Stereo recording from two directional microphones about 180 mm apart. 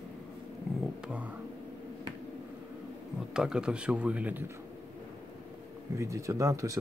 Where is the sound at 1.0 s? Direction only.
5° right (ahead or behind).